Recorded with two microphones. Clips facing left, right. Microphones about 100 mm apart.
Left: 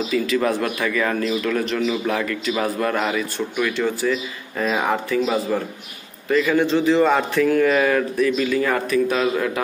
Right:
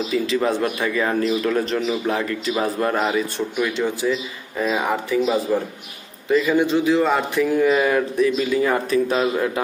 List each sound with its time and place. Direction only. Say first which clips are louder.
0.1 s a man's voice: even; 25° right (ahead or behind)
6.3 s a man's voice: even; 15° right (ahead or behind)
7.3 s a man's voice: right 1 dB; 15° right (ahead or behind)